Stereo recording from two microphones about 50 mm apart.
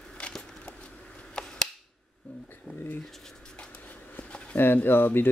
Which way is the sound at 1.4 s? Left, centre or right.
Centre.